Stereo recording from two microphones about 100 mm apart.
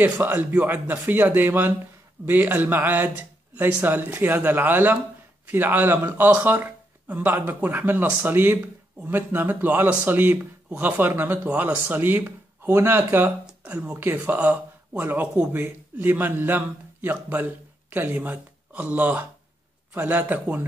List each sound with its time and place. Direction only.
0.0 s a man's voice: 20° right (ahead or behind)